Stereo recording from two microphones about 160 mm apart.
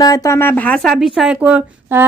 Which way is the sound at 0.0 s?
20° left (ahead or behind).